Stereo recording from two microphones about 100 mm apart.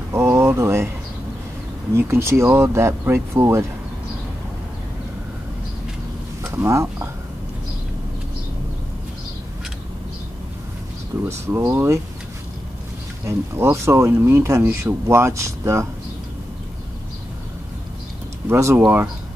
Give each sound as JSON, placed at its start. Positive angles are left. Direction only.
{"t": 0.1, "sound": "a sound", "side_deg": -25}
{"t": 2.0, "sound": "speech", "side_deg": -25}
{"t": 6.4, "sound": "speech", "side_deg": -25}
{"t": 11.2, "sound": "speech", "side_deg": -30}
{"t": 13.2, "sound": "speech", "side_deg": -30}
{"t": 18.5, "sound": "speech", "side_deg": -30}